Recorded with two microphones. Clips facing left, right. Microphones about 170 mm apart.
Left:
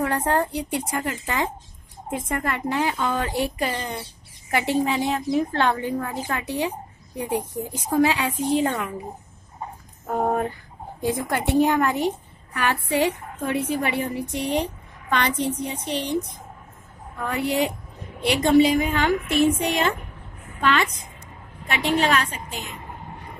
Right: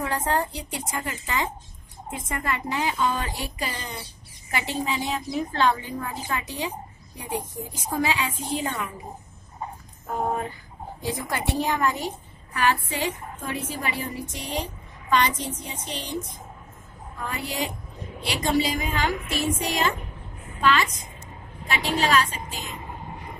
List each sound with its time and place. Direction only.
0.0 s a woman's voice: 55° left (ahead or behind)
7.9 s a woman's voice: 55° left (ahead or behind)
10.0 s a woman's voice: 50° left (ahead or behind)